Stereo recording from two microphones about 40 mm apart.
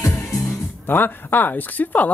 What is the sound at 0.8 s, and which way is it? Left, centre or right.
Speech, left.